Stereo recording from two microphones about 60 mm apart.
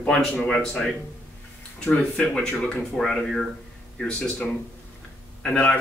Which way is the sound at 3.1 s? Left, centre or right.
Centre.